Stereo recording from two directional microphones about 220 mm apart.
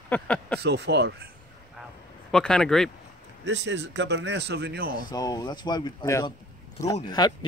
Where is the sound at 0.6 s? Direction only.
50° right (ahead or behind).